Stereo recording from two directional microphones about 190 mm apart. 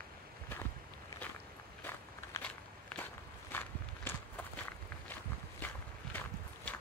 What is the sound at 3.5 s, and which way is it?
Walk, 10° left (ahead or behind).